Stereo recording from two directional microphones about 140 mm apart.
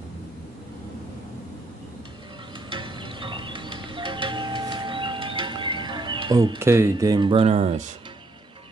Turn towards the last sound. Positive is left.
turn(degrees=-50)  # may be behind; listen again after turning